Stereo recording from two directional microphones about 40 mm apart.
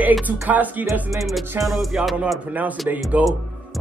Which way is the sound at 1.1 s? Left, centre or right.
Centre.